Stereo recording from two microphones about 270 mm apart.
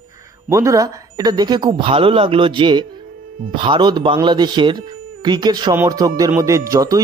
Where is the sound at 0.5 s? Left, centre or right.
Centre.